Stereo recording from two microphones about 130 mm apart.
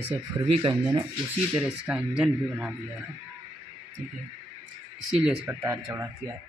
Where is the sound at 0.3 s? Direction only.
20° right (ahead or behind).